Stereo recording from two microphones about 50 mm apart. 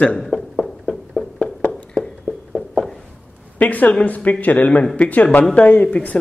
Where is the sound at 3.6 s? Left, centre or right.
Left.